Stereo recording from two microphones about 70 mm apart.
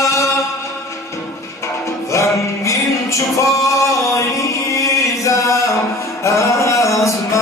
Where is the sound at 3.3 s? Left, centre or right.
Left.